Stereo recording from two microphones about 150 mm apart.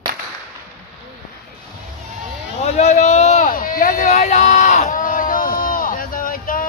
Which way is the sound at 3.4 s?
70° left (ahead or behind).